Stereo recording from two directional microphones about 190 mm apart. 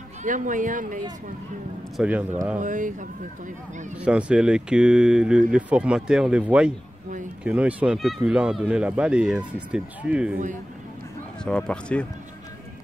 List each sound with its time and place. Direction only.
0.2 s speech: 40° right (ahead or behind)
2.0 s a man's voice: 10° right (ahead or behind)
2.6 s speech: 40° right (ahead or behind)
4.0 s speech: 5° right (ahead or behind)
11.4 s speech: 5° left (ahead or behind)